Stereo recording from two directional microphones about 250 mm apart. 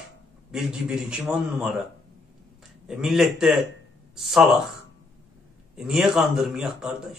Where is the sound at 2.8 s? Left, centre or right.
Centre.